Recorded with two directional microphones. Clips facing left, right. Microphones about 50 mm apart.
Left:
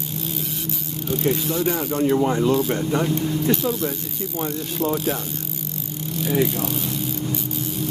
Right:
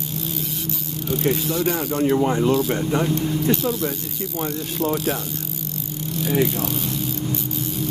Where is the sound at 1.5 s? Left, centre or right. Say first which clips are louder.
Even; centre.